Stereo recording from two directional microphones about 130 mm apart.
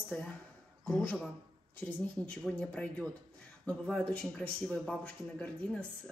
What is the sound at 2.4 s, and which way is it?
Speech, 5° left (ahead or behind).